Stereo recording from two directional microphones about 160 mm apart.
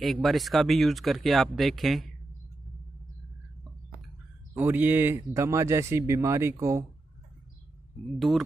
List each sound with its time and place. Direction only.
0.0 s speech: centre (ahead or behind)
4.6 s speech: 10° right (ahead or behind)
8.3 s speech: 20° right (ahead or behind)